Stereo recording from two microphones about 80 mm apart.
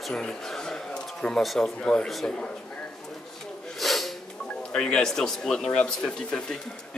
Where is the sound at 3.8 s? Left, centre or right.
Centre.